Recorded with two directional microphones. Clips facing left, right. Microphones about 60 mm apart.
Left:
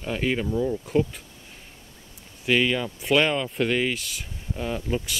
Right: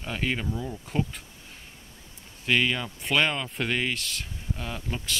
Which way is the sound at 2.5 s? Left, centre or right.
Centre.